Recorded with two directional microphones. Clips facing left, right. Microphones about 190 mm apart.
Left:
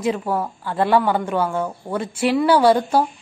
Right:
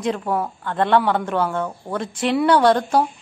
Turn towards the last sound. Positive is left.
turn(degrees=5)  # may be behind; listen again after turning